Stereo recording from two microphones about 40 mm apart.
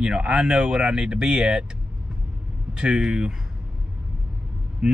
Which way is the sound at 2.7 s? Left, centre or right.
Centre.